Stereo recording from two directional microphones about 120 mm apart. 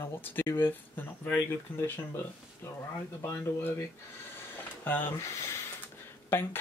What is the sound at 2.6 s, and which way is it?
Speech, 20° left (ahead or behind).